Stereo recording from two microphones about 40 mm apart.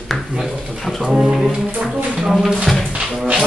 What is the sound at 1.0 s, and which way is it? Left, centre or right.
Speech, centre.